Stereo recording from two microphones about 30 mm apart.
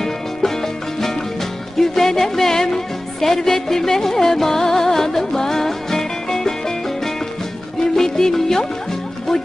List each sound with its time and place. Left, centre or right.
1.8 s music: centre
7.8 s music: centre